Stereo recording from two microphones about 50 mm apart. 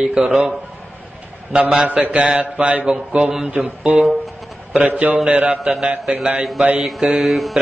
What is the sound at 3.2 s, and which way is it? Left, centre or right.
Speech, centre.